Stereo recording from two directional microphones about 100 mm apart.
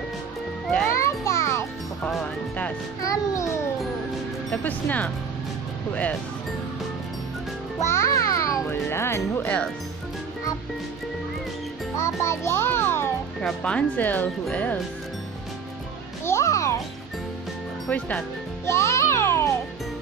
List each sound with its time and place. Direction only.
0.9 s music: 30° left (ahead or behind)
3.0 s music: 30° left (ahead or behind)
4.6 s speech: 15° left (ahead or behind)
7.8 s music: 30° left (ahead or behind)
12.0 s music: 30° left (ahead or behind)
13.4 s speech: 10° left (ahead or behind)
16.3 s music: 30° left (ahead or behind)
17.8 s speech: 15° left (ahead or behind)
18.7 s music: 30° left (ahead or behind)